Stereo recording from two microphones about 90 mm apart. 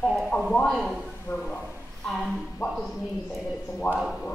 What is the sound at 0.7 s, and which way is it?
Speech, 5° left (ahead or behind).